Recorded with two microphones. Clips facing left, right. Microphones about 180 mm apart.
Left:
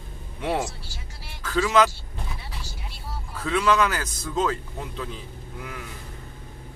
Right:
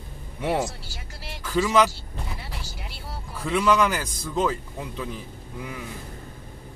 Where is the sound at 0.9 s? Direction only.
60° right (ahead or behind).